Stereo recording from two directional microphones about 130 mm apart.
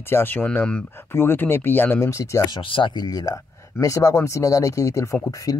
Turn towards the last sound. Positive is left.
turn(degrees=25)  # may be behind; listen again after turning